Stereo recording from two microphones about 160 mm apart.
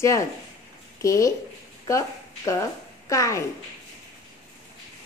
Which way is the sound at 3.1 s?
20° left (ahead or behind).